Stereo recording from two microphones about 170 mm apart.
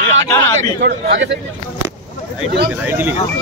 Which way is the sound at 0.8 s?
90° right.